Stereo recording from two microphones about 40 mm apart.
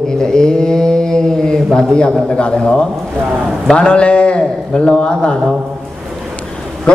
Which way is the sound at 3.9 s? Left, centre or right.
Left.